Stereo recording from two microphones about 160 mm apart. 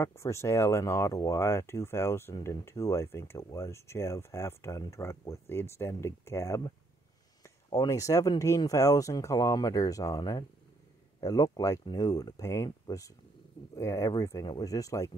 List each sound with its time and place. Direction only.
0.0 s speech: 15° left (ahead or behind)